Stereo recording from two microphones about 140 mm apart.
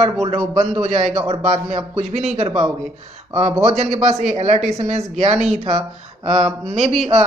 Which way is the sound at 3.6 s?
55° right (ahead or behind).